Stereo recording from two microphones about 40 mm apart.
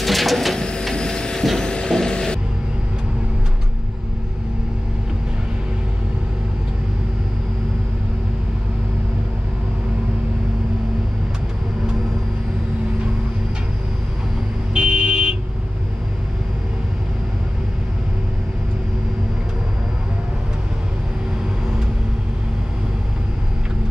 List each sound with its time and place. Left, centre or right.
0.0 s printer: centre
0.6 s printer: left
1.6 s vehicle: left
14.7 s a sound: right